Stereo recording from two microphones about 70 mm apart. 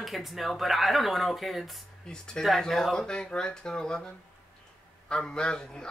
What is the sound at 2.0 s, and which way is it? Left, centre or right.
A man's voice, centre.